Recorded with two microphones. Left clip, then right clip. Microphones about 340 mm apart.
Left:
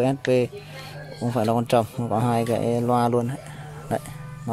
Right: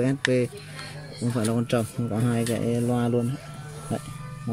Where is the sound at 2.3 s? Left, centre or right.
Left.